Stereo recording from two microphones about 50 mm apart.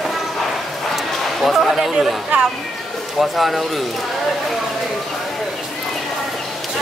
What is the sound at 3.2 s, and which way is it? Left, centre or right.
Speech, centre.